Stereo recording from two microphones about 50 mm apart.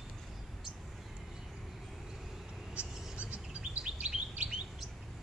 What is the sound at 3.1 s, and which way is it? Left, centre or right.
Bird, right.